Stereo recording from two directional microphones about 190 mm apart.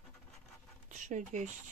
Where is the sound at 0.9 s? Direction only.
40° right (ahead or behind).